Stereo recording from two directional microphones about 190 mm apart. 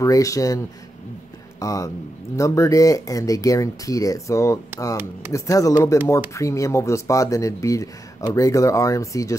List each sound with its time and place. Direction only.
0.0 s speech: 15° left (ahead or behind)
1.6 s speech: 15° left (ahead or behind)